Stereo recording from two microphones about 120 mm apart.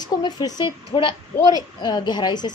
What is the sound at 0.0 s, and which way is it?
A woman's voice, 35° left (ahead or behind).